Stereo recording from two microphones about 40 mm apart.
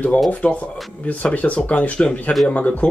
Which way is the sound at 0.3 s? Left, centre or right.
Left.